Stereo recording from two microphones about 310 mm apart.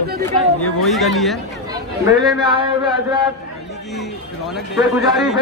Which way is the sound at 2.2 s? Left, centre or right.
Centre.